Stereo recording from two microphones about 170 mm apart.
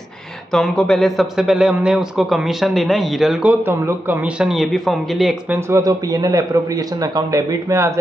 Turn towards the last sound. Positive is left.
turn(degrees=-20)  # may be behind; listen again after turning